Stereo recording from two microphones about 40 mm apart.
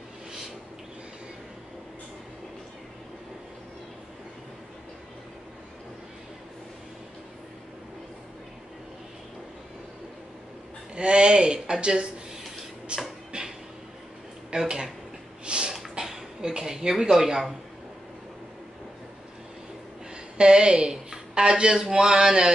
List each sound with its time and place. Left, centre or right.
11.0 s speech: right
12.9 s a sound: right
14.5 s speech: right
15.4 s snort: right
15.9 s a sound: centre
17.0 s speech: centre
20.3 s a woman's voice: right